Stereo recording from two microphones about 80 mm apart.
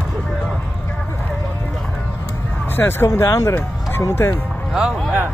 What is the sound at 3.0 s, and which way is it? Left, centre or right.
Speech, left.